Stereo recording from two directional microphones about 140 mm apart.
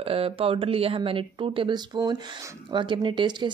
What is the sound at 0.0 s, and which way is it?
Speech, 40° right (ahead or behind).